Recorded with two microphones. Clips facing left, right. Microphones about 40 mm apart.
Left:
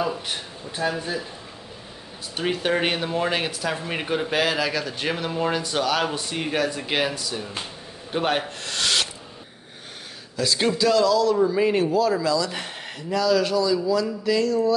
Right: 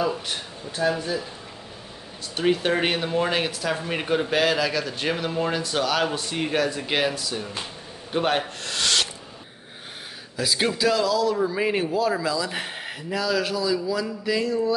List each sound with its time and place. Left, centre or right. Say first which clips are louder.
0.7 s speech: right 2 dB; centre
2.3 s speech: right 2 dB; centre
10.3 s a man's voice: left 2 dB; centre